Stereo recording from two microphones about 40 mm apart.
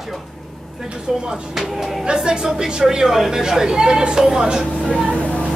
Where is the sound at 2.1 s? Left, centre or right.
Centre.